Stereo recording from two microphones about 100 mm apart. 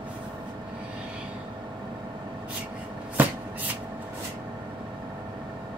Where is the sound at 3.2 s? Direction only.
15° right (ahead or behind).